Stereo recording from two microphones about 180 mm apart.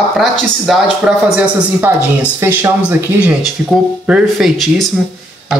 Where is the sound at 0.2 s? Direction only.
Centre (ahead or behind).